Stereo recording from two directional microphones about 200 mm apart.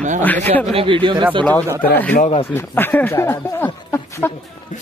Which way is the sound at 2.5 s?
10° left (ahead or behind).